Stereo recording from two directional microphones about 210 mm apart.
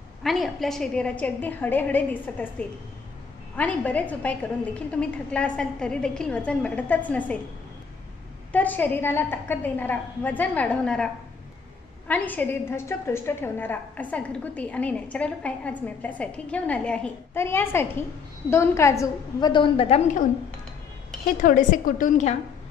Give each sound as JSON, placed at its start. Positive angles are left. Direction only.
{"t": 0.2, "sound": "a woman's voice", "side_deg": 0}
{"t": 3.5, "sound": "a woman's voice", "side_deg": 5}
{"t": 8.5, "sound": "a woman's voice", "side_deg": 10}
{"t": 12.1, "sound": "a woman's voice", "side_deg": 10}
{"t": 21.4, "sound": "a woman's voice", "side_deg": 40}